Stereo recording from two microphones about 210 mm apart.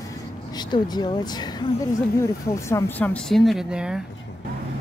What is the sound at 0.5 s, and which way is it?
Speech, 20° left (ahead or behind).